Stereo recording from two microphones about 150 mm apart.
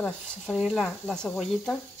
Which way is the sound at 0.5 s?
Centre (ahead or behind).